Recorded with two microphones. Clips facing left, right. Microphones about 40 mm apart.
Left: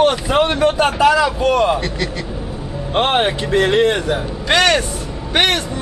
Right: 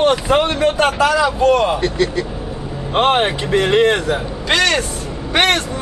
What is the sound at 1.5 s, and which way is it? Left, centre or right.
Speech, centre.